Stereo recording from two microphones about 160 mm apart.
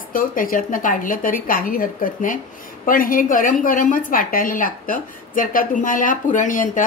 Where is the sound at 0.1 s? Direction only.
60° left (ahead or behind).